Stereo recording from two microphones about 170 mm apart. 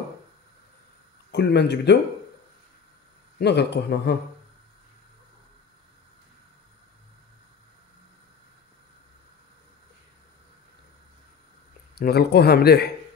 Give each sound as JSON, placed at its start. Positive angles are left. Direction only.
{"t": 1.3, "sound": "speech", "side_deg": 80}
{"t": 3.3, "sound": "speech", "side_deg": 80}
{"t": 12.0, "sound": "speech", "side_deg": 70}